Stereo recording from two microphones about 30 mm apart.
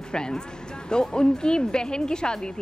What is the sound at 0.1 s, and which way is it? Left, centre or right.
Speech, left.